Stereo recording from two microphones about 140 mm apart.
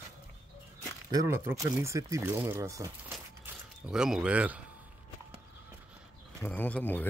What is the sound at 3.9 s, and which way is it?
Speech, 5° right (ahead or behind).